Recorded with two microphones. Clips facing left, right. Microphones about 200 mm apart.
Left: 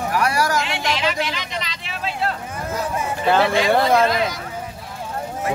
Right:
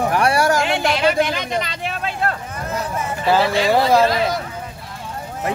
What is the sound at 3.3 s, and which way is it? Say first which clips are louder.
Speech: right 1 dB; 5° right (ahead or behind).